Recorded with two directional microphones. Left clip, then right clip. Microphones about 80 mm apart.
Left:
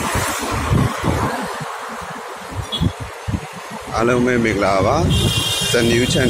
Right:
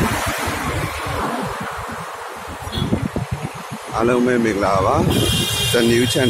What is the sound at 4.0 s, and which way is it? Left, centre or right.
Speech, centre.